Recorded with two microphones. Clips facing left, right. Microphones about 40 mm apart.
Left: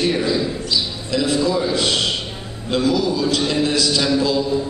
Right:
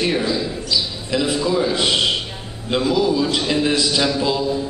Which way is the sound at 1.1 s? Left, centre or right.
Centre.